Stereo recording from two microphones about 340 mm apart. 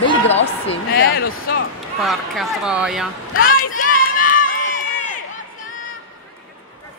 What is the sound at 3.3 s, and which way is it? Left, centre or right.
Run, left.